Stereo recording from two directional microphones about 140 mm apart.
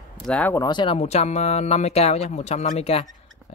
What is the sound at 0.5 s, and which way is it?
Speech, 30° left (ahead or behind).